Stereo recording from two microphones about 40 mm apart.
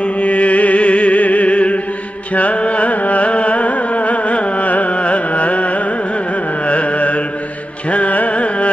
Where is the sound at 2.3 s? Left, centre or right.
Left.